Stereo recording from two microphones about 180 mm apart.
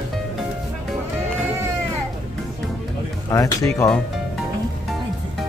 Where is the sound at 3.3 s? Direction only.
20° left (ahead or behind).